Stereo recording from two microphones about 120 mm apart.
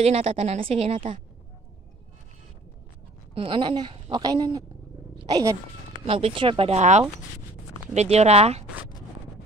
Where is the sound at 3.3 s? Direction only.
45° right (ahead or behind).